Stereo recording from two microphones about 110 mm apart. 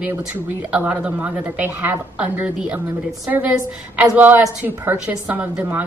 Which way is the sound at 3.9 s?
15° right (ahead or behind).